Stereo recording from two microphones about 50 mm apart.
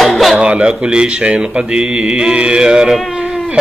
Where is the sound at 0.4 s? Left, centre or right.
Right.